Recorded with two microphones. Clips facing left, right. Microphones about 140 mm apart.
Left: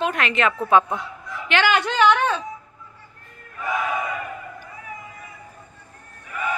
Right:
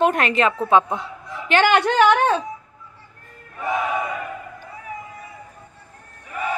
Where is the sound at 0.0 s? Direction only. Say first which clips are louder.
Right 4 dB; 45° right (ahead or behind); by 1.4 s 30° right (ahead or behind).